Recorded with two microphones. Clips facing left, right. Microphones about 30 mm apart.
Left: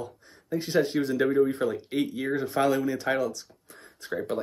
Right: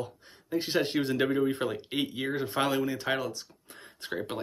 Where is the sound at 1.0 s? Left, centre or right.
Right.